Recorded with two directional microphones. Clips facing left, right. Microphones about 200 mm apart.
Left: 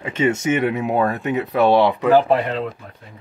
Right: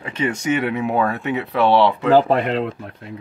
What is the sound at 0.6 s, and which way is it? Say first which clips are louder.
Speech: left 1 dB; 45° left (ahead or behind).